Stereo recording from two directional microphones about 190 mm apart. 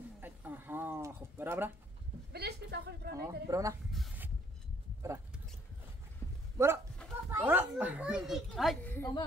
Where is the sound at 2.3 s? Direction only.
60° right (ahead or behind).